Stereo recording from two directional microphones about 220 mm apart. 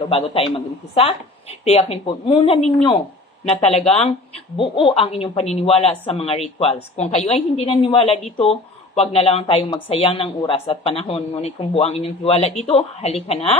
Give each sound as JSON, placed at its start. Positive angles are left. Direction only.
{"t": 0.0, "sound": "a woman's voice", "side_deg": 25}